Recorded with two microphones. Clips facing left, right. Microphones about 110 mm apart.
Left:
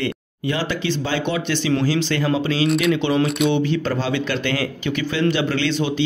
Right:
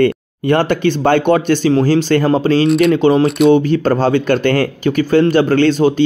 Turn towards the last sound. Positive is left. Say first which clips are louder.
# right 9 dB
turn(degrees=-45)  # may be behind; listen again after turning